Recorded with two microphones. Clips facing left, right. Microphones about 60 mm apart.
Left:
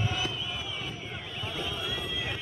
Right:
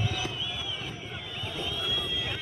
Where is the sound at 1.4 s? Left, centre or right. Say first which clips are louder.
Even; left.